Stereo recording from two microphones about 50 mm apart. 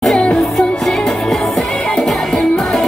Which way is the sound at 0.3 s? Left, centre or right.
Centre.